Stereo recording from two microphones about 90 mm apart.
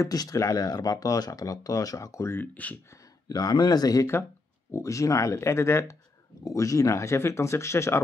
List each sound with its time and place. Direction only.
0.0 s speech: 45° left (ahead or behind)
2.3 s speech: 20° left (ahead or behind)
2.9 s speech: 45° left (ahead or behind)